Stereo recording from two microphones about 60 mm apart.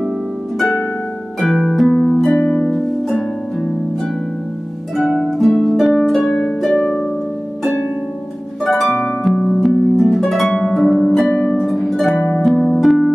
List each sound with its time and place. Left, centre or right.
1.4 s harp: centre
2.4 s harp: centre
2.7 s harp: centre
4.9 s harp: centre
8.6 s harp: centre
9.3 s music: centre
9.6 s harp: centre
10.9 s harp: centre
11.3 s harp: left
11.6 s harp: centre